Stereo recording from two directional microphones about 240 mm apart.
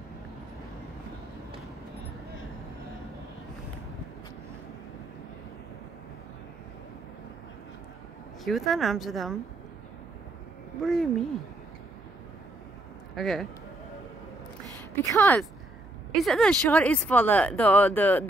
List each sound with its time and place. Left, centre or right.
8.5 s speech: centre
10.8 s speech: centre
13.1 s speech: centre
15.0 s speech: centre